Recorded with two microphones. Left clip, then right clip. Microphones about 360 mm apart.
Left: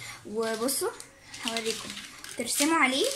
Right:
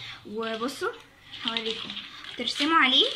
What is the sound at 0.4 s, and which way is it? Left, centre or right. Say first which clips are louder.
Speech: left 2 dB; centre.